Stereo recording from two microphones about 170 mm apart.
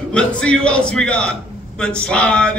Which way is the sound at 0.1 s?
5° left (ahead or behind).